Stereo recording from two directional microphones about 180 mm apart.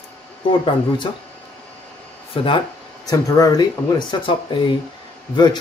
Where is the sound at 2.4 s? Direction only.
25° left (ahead or behind).